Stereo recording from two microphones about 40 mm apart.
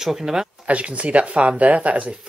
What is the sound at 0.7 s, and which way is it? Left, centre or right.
Speech, right.